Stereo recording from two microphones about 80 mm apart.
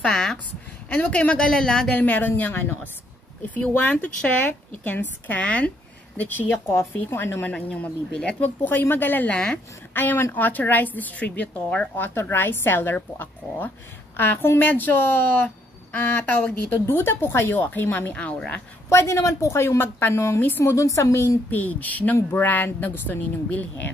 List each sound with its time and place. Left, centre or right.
0.0 s a woman's voice: centre
0.8 s a woman's voice: left
7.4 s speech: centre
8.6 s a woman's voice: left
18.9 s a woman's voice: left
20.7 s a woman's voice: left